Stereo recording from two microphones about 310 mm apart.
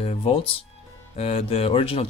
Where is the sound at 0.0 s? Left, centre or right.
Centre.